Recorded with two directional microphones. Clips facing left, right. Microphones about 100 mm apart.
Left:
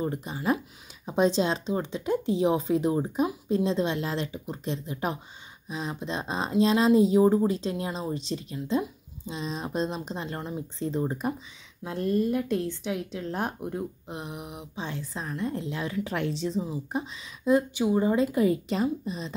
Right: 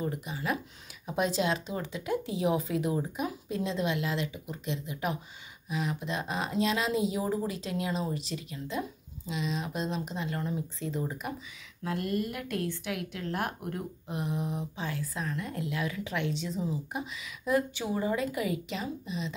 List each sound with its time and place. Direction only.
0.0 s a woman's voice: 30° left (ahead or behind); by 14.9 s 15° left (ahead or behind)
14.9 s a woman's voice: 25° left (ahead or behind)